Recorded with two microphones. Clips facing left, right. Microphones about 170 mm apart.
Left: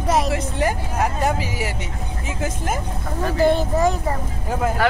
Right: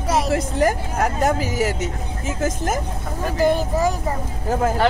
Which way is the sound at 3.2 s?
10° right (ahead or behind).